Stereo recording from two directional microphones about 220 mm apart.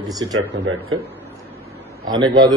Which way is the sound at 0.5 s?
60° right (ahead or behind).